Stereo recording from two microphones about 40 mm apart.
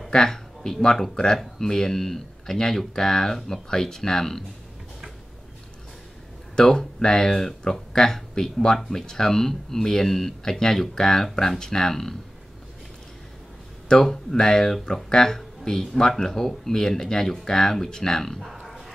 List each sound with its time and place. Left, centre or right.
0.1 s speech: centre
6.5 s speech: centre
13.8 s speech: centre
18.6 s a sound: centre